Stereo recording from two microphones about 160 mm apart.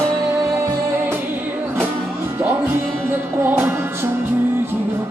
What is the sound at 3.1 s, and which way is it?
Music, 10° right (ahead or behind).